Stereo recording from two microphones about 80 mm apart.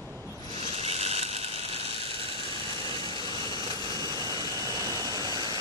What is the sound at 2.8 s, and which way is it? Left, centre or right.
Vehicle, right.